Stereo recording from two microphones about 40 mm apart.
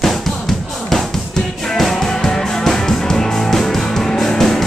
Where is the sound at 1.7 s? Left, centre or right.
Centre.